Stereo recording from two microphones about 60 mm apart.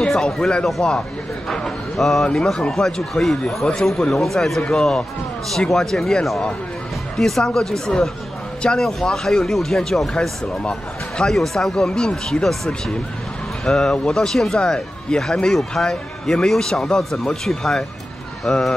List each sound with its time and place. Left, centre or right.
0.4 s a man's voice: centre